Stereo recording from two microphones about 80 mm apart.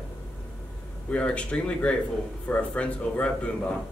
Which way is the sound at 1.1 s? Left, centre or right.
Centre.